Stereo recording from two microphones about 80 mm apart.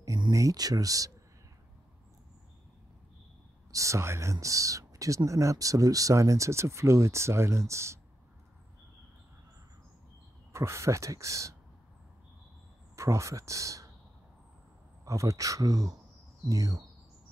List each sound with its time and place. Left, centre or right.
0.3 s speech: right
3.7 s speech: right
10.5 s speech: right
12.9 s speech: right
15.0 s speech: right